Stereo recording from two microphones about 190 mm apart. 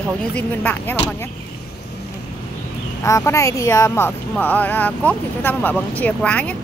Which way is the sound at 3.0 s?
15° left (ahead or behind).